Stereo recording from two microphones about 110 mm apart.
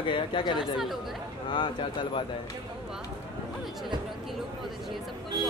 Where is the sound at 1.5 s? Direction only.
45° left (ahead or behind).